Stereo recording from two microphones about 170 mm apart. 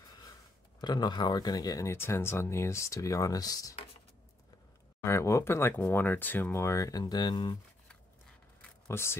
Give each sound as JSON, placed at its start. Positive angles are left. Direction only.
{"t": 0.7, "sound": "speech", "side_deg": 25}
{"t": 5.0, "sound": "speech", "side_deg": 15}
{"t": 8.8, "sound": "speech", "side_deg": 15}